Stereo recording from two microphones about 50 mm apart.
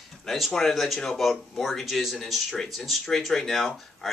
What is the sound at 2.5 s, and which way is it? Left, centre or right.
Speech, centre.